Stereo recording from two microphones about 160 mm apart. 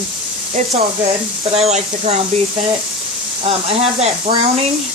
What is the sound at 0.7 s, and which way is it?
Speech, 40° right (ahead or behind).